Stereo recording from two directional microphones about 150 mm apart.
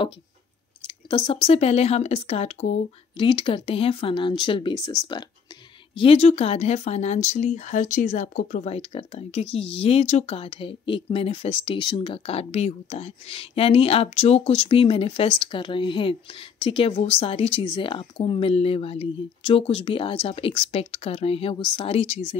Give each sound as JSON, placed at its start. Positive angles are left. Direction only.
{"t": 0.8, "sound": "speech", "side_deg": 35}
{"t": 3.2, "sound": "speech", "side_deg": 35}
{"t": 5.9, "sound": "speech", "side_deg": 40}